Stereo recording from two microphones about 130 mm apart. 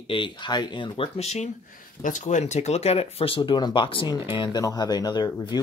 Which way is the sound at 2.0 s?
80° left.